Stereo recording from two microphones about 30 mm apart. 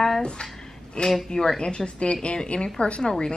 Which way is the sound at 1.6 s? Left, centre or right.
Left.